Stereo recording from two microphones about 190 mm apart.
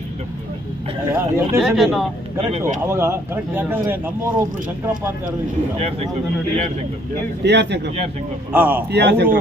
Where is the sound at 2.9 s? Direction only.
15° right (ahead or behind).